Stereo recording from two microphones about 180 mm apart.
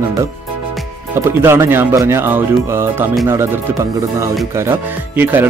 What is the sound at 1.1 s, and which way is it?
Speech, 15° right (ahead or behind).